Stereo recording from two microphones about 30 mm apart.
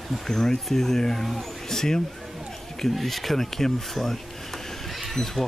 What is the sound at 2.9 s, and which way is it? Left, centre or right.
Speech, centre.